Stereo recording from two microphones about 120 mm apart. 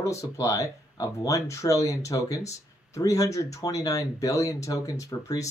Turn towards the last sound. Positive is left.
turn(degrees=30)  # may be behind; listen again after turning